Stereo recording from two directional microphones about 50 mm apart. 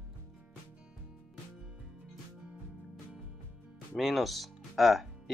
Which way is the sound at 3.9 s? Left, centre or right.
Centre.